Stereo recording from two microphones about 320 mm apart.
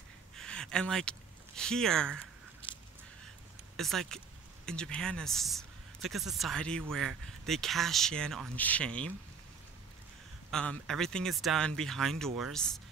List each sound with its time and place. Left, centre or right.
0.4 s speech: centre
2.6 s a sound: centre
3.7 s speech: centre
10.5 s speech: centre